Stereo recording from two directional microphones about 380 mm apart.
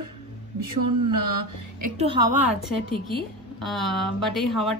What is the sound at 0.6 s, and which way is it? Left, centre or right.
Speech, right.